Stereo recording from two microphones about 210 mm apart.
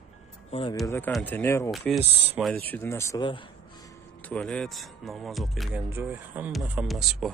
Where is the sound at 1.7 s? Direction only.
Centre (ahead or behind).